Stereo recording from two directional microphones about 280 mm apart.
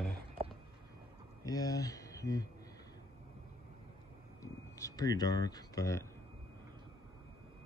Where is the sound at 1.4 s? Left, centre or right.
Centre.